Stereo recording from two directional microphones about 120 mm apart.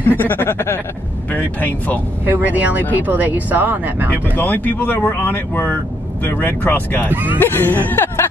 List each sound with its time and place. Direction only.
0.0 s speech: 15° left (ahead or behind)
2.2 s speech: 15° right (ahead or behind)
4.4 s speech: 15° left (ahead or behind)
7.1 s speech: 15° right (ahead or behind)
7.3 s speech: 15° left (ahead or behind)